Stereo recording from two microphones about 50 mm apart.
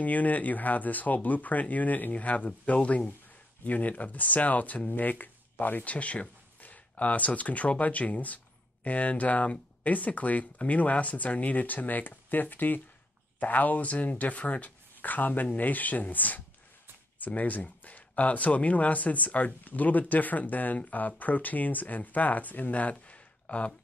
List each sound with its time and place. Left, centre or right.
0.0 s speech: left